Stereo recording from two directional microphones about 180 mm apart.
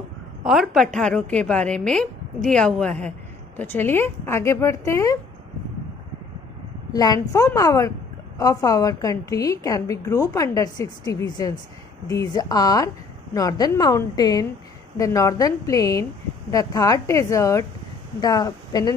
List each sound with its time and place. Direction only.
0.4 s a woman's voice: centre (ahead or behind); by 5.2 s 15° left (ahead or behind)
6.9 s a woman's voice: 20° left (ahead or behind)